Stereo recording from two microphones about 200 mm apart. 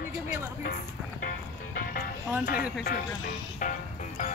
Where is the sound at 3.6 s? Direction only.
40° left (ahead or behind).